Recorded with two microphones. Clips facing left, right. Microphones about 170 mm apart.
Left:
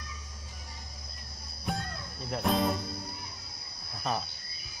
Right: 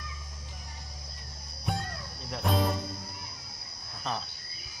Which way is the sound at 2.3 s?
Centre (ahead or behind).